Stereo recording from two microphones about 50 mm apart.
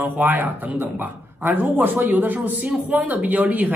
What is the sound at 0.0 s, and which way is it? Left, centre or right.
A man's voice, right.